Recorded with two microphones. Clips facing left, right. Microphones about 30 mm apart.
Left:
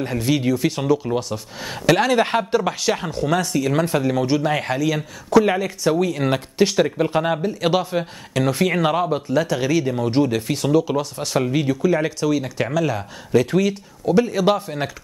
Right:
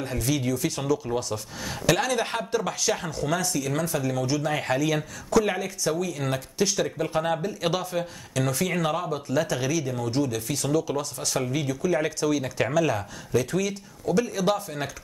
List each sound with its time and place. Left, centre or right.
0.0 s speech: left
4.7 s speech: centre
5.3 s speech: left
5.9 s speech: left
7.0 s speech: left
9.3 s speech: centre
9.7 s speech: left; by 13.0 s centre
13.3 s speech: left